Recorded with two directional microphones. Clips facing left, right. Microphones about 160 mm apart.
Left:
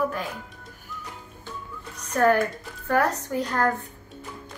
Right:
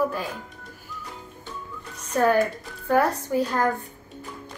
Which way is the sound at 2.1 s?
15° right (ahead or behind).